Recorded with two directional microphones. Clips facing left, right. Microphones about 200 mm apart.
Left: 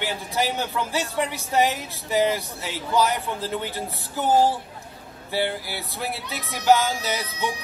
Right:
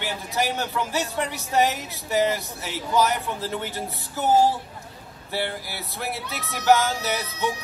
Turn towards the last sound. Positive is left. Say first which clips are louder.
# right 1 dB
turn(degrees=15)  # may be behind; listen again after turning